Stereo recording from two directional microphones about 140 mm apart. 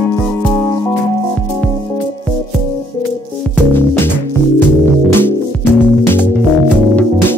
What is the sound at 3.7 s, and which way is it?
Music, 15° left (ahead or behind).